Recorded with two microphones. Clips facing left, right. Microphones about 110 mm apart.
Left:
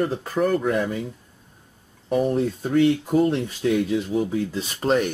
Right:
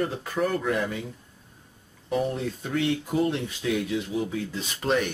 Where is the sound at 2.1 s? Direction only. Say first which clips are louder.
Left 6 dB; 45° left (ahead or behind).